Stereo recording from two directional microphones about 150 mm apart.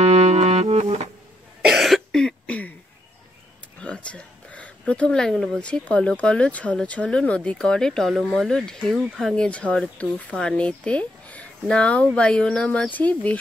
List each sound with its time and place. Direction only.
0.0 s music: 45° right (ahead or behind)
1.7 s cough: centre (ahead or behind)
3.8 s speech: 10° left (ahead or behind)